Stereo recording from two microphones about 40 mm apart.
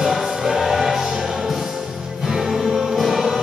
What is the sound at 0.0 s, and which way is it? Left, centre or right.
Music, centre.